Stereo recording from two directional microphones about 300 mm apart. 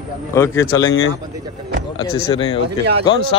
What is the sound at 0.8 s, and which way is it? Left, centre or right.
Speech, left.